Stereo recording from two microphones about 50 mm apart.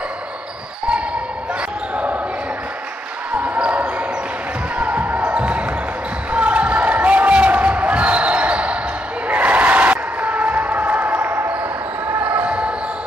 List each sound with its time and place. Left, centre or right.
3.3 s basketball bounce: right
9.3 s crowd: right
12.2 s basketball bounce: right